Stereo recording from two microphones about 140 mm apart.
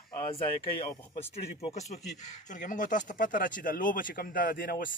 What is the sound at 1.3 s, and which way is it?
Speech, 45° left (ahead or behind).